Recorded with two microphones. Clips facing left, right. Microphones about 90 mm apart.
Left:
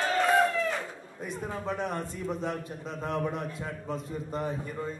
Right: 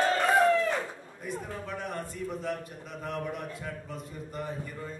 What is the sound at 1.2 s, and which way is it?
A man's voice, 25° left (ahead or behind).